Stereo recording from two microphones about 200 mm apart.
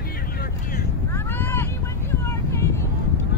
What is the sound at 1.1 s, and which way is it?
Vehicle, 10° left (ahead or behind).